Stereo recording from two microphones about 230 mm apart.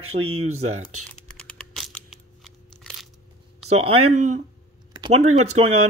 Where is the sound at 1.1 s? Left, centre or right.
Centre.